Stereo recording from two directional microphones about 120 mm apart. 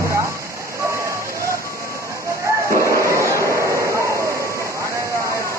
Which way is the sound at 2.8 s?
25° right (ahead or behind).